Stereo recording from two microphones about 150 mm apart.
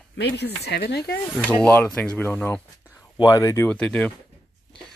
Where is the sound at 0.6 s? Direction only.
90° left.